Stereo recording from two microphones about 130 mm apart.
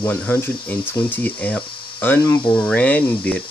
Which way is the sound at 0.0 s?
15° left (ahead or behind).